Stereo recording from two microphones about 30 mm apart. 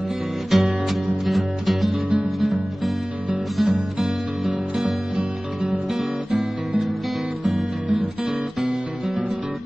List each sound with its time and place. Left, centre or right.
0.5 s music: centre
2.0 s music: right
3.6 s music: right
6.3 s guitar: right
7.4 s music: right